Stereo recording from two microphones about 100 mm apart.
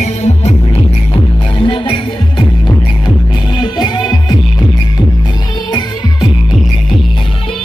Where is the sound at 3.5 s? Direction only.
50° left (ahead or behind).